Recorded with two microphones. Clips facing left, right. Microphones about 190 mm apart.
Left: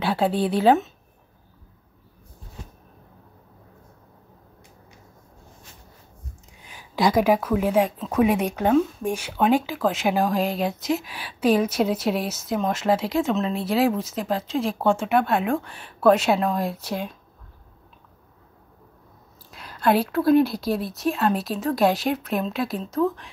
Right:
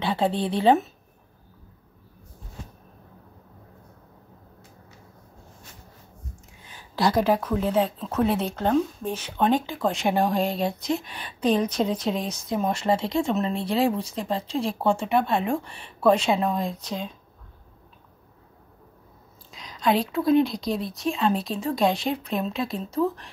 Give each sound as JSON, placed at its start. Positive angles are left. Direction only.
{"t": 0.0, "sound": "speech", "side_deg": 5}
{"t": 6.7, "sound": "a sound", "side_deg": 10}
{"t": 7.4, "sound": "speech", "side_deg": 10}
{"t": 19.5, "sound": "speech", "side_deg": 5}